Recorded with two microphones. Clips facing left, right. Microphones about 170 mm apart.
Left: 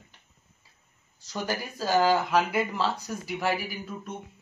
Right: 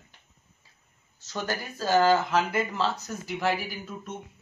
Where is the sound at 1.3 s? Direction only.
10° left (ahead or behind).